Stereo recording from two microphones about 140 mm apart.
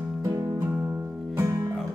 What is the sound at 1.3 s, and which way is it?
Music, 25° right (ahead or behind).